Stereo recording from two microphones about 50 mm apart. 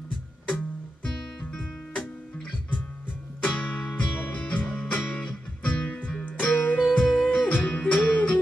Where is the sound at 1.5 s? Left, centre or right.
Left.